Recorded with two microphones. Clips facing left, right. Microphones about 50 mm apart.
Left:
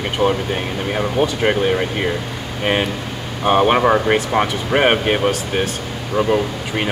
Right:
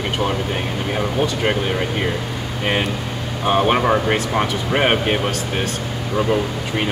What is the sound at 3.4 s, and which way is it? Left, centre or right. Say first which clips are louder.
Speech: left 3 dB; centre.